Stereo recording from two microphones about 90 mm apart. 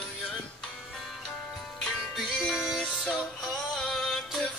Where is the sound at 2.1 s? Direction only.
Centre (ahead or behind).